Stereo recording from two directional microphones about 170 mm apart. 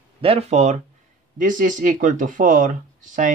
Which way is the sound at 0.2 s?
35° right (ahead or behind).